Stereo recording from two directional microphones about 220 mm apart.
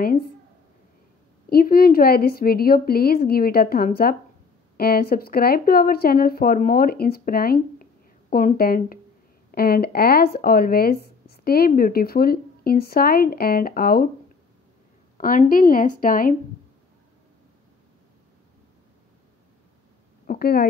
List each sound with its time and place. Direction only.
1.5 s speech: 45° left (ahead or behind)
15.1 s speech: 40° left (ahead or behind)
20.2 s a sound: 45° left (ahead or behind)